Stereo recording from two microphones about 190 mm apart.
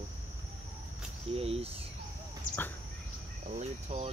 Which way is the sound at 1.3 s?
30° right (ahead or behind).